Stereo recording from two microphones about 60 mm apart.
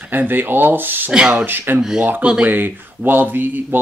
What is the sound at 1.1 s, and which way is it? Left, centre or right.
Speech, centre.